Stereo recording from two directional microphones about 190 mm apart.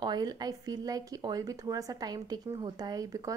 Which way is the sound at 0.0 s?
20° right (ahead or behind).